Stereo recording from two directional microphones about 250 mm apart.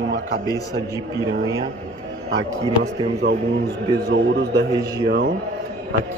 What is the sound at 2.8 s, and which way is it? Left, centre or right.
Speech, right.